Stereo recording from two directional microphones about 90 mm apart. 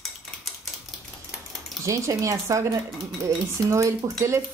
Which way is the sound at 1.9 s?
35° right (ahead or behind).